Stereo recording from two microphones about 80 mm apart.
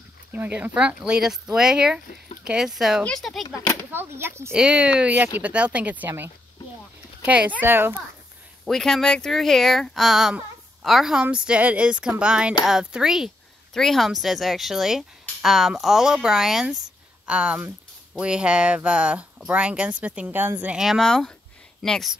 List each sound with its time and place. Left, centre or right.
0.3 s speech: right
0.7 s speech: centre
3.0 s speech: centre
3.4 s speech: left
3.9 s speech: right
4.6 s speech: centre
8.6 s speech: centre
13.7 s speech: centre; by 20.7 s right
20.7 s speech: centre
21.8 s speech: centre